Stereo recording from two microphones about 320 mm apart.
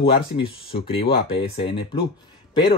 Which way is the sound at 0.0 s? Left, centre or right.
Centre.